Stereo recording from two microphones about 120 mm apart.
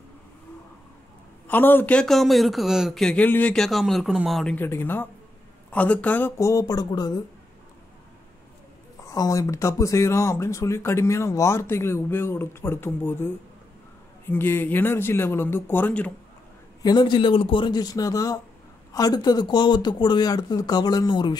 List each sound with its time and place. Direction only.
1.5 s a man's voice: 15° left (ahead or behind)
3.5 s a man's voice: centre (ahead or behind)
4.6 s speech: 15° left (ahead or behind); by 7.2 s 35° left (ahead or behind)
9.0 s speech: 25° left (ahead or behind)
16.8 s speech: 40° left (ahead or behind)